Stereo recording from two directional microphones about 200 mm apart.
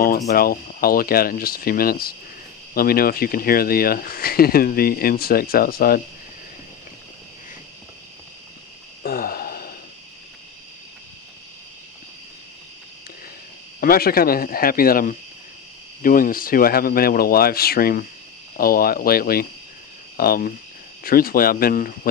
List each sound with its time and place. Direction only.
0.3 s speech: 45° left (ahead or behind)
9.0 s sigh: 50° left (ahead or behind)
13.7 s speech: 50° left (ahead or behind)